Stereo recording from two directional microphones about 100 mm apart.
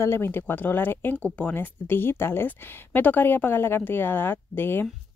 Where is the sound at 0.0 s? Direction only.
25° left (ahead or behind).